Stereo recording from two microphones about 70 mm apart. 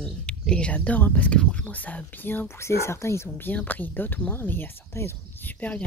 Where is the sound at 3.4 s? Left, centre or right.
Left.